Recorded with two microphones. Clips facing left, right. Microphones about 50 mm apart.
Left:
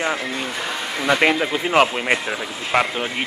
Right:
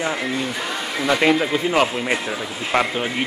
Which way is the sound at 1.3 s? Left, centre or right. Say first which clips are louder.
Right 1 dB; centre.